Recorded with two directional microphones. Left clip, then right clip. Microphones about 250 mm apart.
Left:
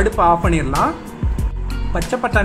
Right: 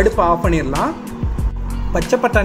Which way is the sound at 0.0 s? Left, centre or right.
Centre.